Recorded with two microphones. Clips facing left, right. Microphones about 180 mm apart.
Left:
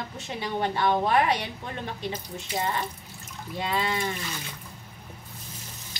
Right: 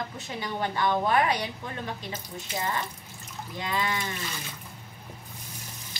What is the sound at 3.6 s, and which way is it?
Speech, 25° left (ahead or behind).